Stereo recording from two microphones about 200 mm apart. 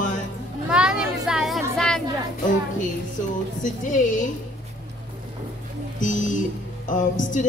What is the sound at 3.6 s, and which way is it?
Speech, 40° left (ahead or behind).